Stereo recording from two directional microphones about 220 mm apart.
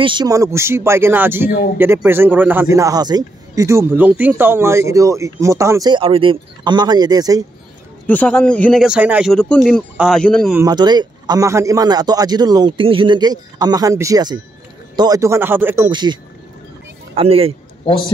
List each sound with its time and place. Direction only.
0.0 s a man's voice: 20° right (ahead or behind)
8.1 s speech: 5° left (ahead or behind)
10.6 s a man's voice: 20° right (ahead or behind)
17.8 s a man's voice: 20° left (ahead or behind)